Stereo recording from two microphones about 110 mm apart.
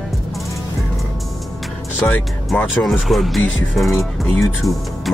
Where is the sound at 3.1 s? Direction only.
Centre (ahead or behind).